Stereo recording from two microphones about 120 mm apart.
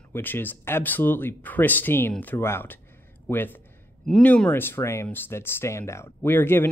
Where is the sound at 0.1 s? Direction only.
15° left (ahead or behind).